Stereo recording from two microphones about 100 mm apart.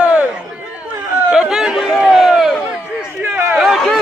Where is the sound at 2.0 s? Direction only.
5° right (ahead or behind).